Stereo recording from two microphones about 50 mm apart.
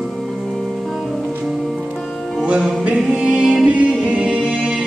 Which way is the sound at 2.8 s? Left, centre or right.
Centre.